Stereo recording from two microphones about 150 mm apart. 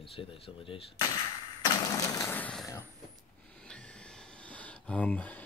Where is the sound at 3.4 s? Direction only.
5° left (ahead or behind).